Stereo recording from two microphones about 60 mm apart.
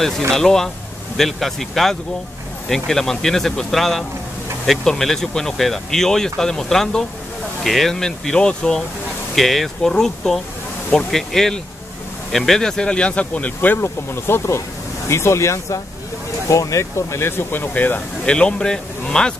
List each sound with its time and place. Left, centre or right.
0.3 s speech: centre
9.3 s speech: centre; by 18.0 s left
18.2 s speech: centre